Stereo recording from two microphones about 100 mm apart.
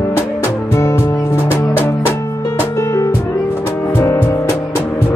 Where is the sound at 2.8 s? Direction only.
30° left (ahead or behind).